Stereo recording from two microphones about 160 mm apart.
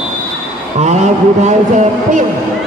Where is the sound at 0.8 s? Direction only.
45° right (ahead or behind).